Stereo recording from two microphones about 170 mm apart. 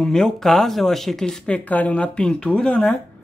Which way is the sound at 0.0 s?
5° left (ahead or behind).